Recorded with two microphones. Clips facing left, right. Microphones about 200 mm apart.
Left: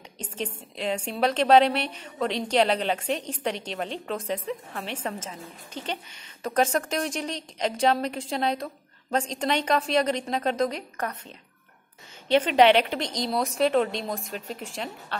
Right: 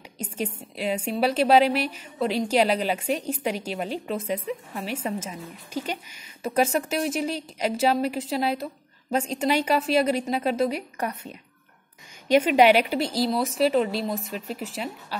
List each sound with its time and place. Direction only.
0.2 s a woman's voice: 10° right (ahead or behind)